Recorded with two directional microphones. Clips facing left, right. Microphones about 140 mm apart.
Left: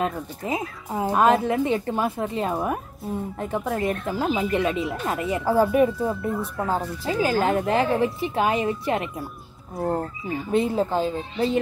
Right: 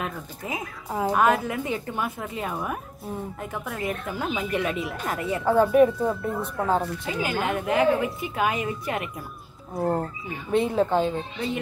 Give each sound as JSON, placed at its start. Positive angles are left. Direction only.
{"t": 0.0, "sound": "speech", "side_deg": 25}
{"t": 5.4, "sound": "speech", "side_deg": 5}
{"t": 7.1, "sound": "speech", "side_deg": 30}
{"t": 9.8, "sound": "speech", "side_deg": 0}
{"t": 11.3, "sound": "speech", "side_deg": 30}